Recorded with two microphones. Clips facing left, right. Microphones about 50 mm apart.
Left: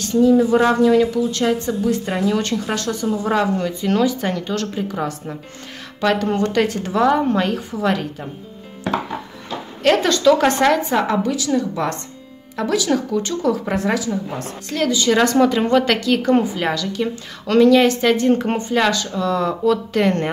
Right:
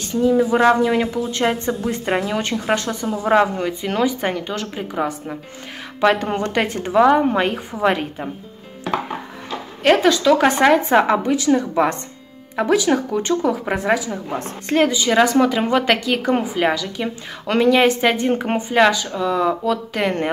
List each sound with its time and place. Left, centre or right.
0.0 s a woman's voice: centre
9.8 s a woman's voice: centre